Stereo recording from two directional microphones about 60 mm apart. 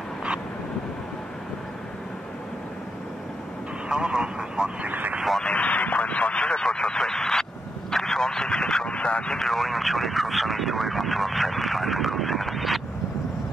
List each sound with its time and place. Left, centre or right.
3.9 s speech: centre
4.8 s speech: right
5.4 s vehicle: left
9.4 s speech: centre